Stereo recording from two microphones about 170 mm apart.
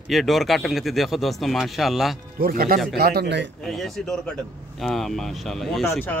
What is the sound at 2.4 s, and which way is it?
A man's voice, 60° right (ahead or behind).